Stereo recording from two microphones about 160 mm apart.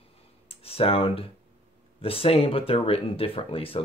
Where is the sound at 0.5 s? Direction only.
35° left (ahead or behind).